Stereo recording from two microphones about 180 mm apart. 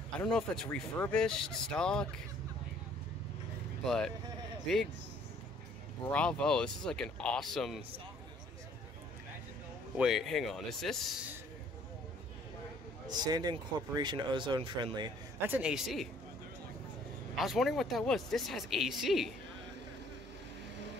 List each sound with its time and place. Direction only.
0.2 s speech: 5° left (ahead or behind)
3.8 s speech: centre (ahead or behind)
6.0 s speech: 5° left (ahead or behind)
9.9 s speech: centre (ahead or behind)
13.0 s speech: 25° right (ahead or behind)
15.4 s speech: 5° right (ahead or behind)
17.4 s speech: centre (ahead or behind)